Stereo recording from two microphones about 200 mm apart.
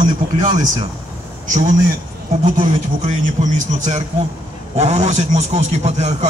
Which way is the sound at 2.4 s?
35° right (ahead or behind).